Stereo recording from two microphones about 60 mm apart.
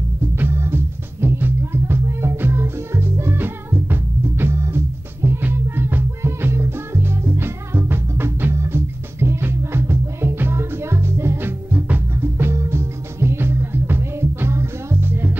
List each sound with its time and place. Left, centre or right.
0.4 s music: right
15.0 s music: right